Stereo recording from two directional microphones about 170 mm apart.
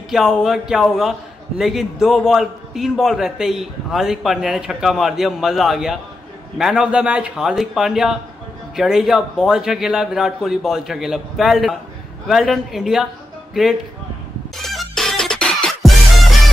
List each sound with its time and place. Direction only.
0.1 s a man's voice: centre (ahead or behind)
14.6 s music: centre (ahead or behind)